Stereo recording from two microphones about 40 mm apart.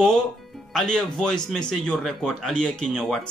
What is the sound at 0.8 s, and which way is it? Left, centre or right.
A man's voice, centre.